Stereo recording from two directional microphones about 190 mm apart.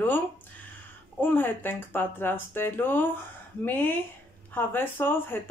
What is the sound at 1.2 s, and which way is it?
Speech, 10° left (ahead or behind).